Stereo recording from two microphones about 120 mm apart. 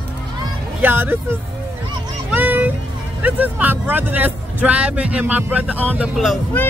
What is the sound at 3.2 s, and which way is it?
Speech, 15° right (ahead or behind).